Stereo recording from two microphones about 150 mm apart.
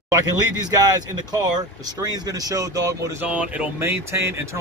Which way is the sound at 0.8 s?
25° right (ahead or behind).